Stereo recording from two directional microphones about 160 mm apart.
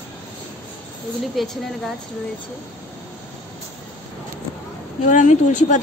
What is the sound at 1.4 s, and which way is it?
Speech, centre (ahead or behind).